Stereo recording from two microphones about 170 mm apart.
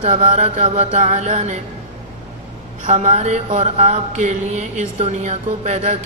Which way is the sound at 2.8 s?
45° right (ahead or behind).